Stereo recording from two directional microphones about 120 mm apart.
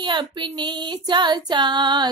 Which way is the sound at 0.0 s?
40° right (ahead or behind).